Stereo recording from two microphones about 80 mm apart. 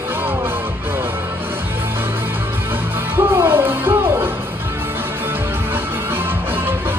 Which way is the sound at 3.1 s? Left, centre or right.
Right.